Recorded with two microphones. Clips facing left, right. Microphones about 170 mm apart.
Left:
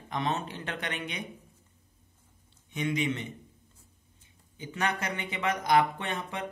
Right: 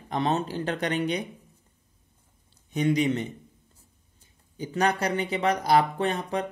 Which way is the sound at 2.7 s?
40° right (ahead or behind).